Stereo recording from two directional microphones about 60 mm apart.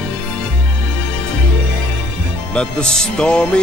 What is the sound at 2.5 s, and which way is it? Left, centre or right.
Music, centre.